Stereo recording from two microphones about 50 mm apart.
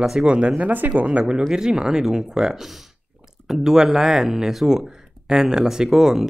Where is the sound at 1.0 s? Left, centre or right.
Right.